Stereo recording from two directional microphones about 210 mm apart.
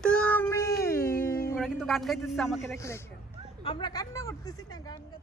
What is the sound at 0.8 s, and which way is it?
Music, 10° left (ahead or behind).